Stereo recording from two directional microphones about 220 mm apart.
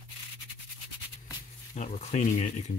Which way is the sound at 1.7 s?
30° left (ahead or behind).